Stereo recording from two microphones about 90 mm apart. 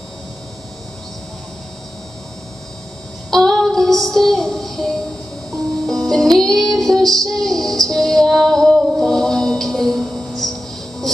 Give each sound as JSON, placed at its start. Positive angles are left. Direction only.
{"t": 3.3, "sound": "child singing", "side_deg": 5}
{"t": 5.9, "sound": "music", "side_deg": 5}